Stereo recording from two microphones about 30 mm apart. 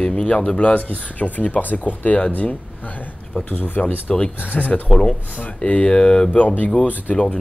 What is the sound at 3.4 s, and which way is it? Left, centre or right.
Speech, left.